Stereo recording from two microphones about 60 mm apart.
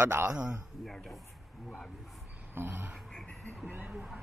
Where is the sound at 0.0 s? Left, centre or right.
Right.